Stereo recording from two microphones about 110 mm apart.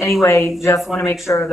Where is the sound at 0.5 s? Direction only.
25° left (ahead or behind).